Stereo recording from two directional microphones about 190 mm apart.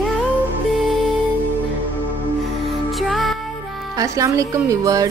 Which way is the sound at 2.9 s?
Centre (ahead or behind).